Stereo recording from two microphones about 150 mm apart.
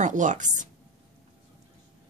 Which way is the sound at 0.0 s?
55° right (ahead or behind).